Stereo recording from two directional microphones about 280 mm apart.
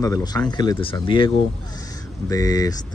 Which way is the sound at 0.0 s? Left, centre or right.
Centre.